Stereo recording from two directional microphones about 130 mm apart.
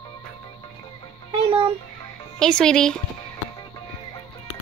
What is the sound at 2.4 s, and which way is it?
Speech, 5° left (ahead or behind).